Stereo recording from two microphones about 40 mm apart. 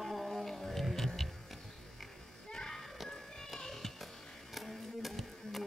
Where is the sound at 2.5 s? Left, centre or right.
Centre.